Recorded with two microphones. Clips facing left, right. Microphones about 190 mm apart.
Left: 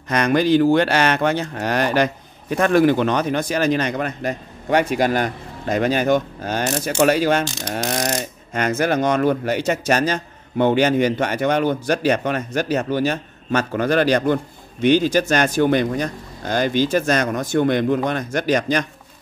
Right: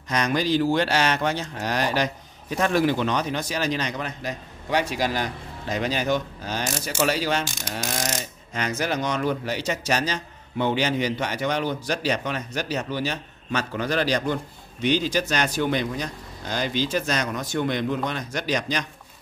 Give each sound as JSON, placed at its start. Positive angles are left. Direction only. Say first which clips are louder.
{"t": 0.1, "sound": "speech", "louder": "left 6 dB", "side_deg": 55}